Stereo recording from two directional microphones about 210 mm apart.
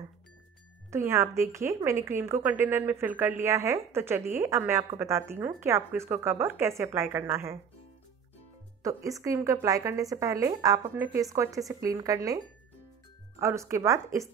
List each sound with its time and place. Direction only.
0.8 s a woman's voice: 15° right (ahead or behind)
8.8 s a woman's voice: 15° right (ahead or behind)
13.4 s a woman's voice: 15° right (ahead or behind)